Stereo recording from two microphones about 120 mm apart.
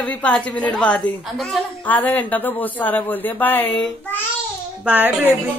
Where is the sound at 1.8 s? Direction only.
15° left (ahead or behind).